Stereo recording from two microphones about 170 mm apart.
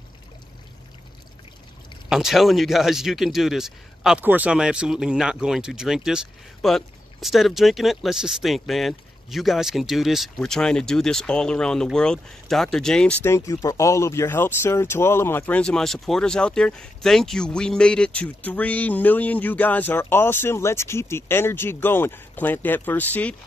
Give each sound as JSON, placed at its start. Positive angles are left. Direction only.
{"t": 2.0, "sound": "speech", "side_deg": 0}